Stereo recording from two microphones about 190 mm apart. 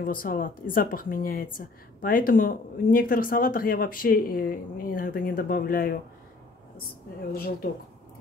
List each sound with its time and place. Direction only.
0.0 s speech: 50° left (ahead or behind)
7.3 s speech: 50° left (ahead or behind)